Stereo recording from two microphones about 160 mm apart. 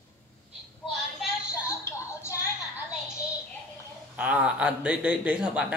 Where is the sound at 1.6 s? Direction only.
15° left (ahead or behind).